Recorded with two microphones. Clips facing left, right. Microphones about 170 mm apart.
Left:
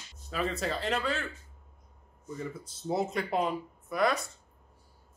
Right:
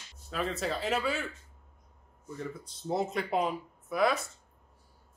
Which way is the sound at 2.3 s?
5° left (ahead or behind).